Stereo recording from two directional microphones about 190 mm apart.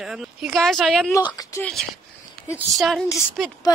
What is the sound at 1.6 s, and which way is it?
Speech, centre (ahead or behind).